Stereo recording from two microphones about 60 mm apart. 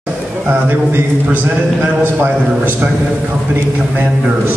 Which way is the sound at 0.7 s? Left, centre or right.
Right.